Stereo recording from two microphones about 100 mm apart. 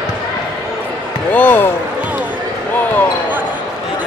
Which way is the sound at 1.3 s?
20° left (ahead or behind).